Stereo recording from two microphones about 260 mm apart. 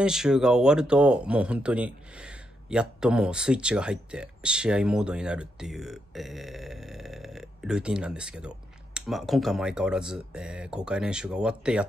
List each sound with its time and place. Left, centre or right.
0.0 s speech: centre